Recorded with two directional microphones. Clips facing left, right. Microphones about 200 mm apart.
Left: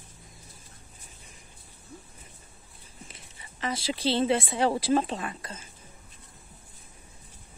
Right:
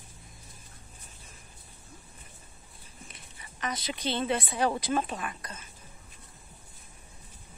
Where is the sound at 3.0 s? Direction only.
25° left (ahead or behind).